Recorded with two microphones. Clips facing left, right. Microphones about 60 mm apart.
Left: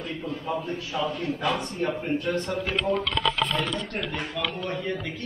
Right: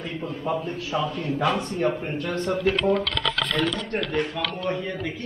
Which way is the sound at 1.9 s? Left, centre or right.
Right.